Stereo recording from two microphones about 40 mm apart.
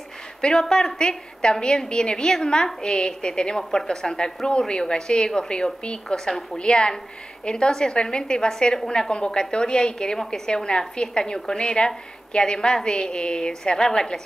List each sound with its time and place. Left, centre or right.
0.4 s a woman's voice: centre